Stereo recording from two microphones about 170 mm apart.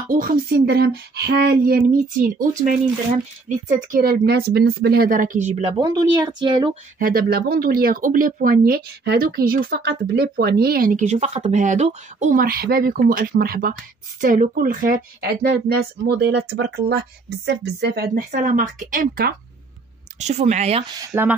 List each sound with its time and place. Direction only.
0.1 s speech: 55° right (ahead or behind); by 5.9 s 35° right (ahead or behind)
5.9 s speech: 25° right (ahead or behind)
7.0 s speech: 60° right (ahead or behind)
17.5 s speech: 80° right
18.1 s speech: 50° right (ahead or behind)
20.2 s speech: 40° right (ahead or behind)
20.8 s speech: 20° right (ahead or behind)